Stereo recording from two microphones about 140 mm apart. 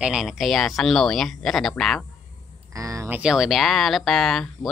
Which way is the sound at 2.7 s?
25° right (ahead or behind).